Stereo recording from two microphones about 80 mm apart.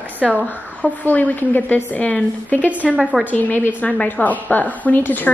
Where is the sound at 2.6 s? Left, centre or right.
Centre.